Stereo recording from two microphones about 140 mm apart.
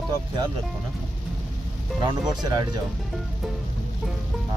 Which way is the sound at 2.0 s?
30° right (ahead or behind).